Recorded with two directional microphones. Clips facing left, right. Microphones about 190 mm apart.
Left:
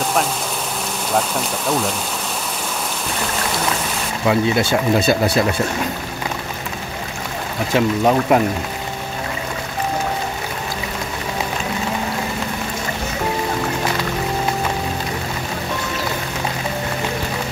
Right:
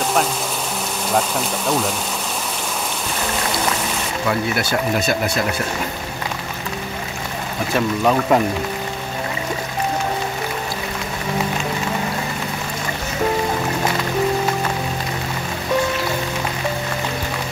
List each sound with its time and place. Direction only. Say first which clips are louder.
4.3 s speech: left 5 dB; 25° left (ahead or behind)
7.7 s speech: left 2 dB; 20° left (ahead or behind)